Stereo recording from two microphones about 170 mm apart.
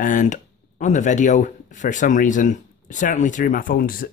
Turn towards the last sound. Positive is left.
turn(degrees=55)  # may be behind; listen again after turning